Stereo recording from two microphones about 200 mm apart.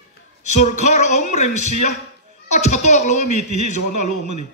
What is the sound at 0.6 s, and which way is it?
Speech, 35° left (ahead or behind).